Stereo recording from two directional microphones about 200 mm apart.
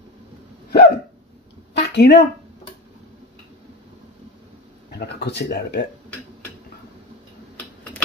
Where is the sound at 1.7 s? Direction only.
55° left (ahead or behind).